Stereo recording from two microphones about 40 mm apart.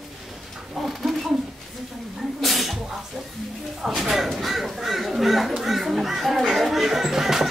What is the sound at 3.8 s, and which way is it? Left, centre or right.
Crow, centre.